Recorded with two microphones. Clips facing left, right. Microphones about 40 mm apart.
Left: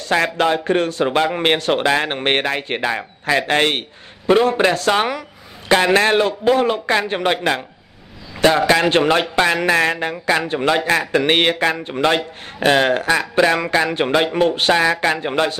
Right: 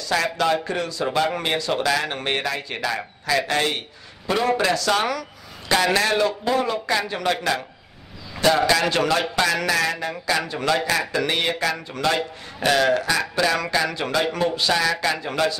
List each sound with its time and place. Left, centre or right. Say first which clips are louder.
0.0 s speech: left 4 dB; left
1.4 s a man's voice: left 7 dB; left
1.8 s speech: left 5 dB; left
11.9 s speech: left 5 dB; left